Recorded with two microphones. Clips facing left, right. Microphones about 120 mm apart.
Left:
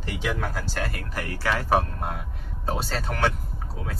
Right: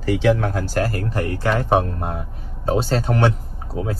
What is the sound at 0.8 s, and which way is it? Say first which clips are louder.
Speech: right 13 dB; 35° right (ahead or behind).